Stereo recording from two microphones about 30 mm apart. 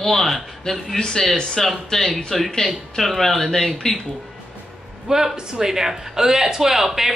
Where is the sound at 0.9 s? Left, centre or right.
Centre.